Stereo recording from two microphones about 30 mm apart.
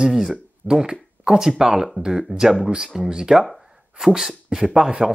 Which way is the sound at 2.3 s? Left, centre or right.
Right.